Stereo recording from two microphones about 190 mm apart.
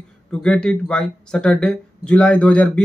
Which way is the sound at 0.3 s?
5° left (ahead or behind).